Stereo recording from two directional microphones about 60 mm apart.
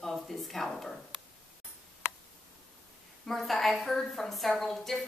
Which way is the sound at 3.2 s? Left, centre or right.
Centre.